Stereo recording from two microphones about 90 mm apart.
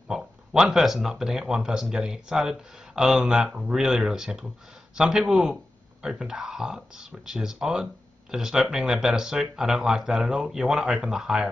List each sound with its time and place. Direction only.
0.1 s speech: 5° right (ahead or behind)